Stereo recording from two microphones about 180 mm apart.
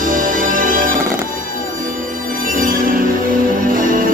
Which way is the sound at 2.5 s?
50° right (ahead or behind).